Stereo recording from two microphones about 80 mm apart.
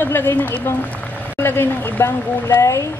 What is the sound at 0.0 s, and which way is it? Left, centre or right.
Speech, left.